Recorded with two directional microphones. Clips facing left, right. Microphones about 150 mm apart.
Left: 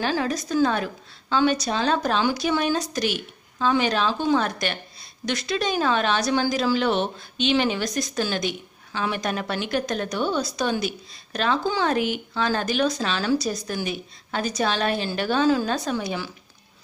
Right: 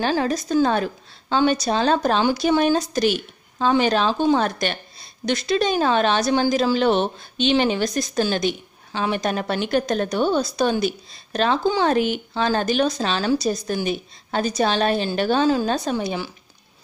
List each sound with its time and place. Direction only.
0.0 s a woman's voice: 30° right (ahead or behind)